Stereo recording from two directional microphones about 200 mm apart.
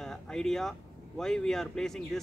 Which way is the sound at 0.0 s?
5° left (ahead or behind).